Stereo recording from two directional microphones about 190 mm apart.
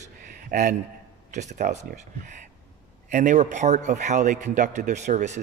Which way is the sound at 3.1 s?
40° right (ahead or behind).